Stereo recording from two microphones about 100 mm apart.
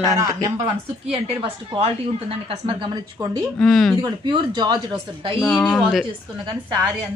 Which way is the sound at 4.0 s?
50° right (ahead or behind).